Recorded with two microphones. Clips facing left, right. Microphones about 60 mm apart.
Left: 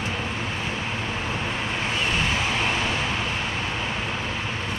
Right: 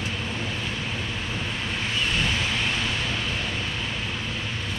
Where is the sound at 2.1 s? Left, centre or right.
Centre.